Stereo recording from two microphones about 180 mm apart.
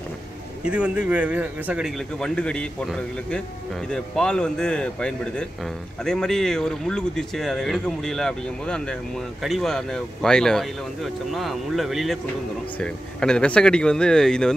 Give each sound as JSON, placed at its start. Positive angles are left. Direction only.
{"t": 0.7, "sound": "speech", "side_deg": -5}